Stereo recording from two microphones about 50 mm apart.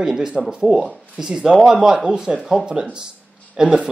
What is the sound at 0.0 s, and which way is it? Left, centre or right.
Speech, centre.